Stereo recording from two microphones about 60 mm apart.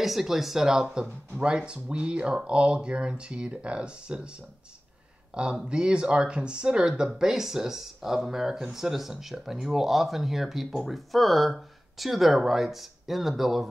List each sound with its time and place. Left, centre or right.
0.0 s speech: centre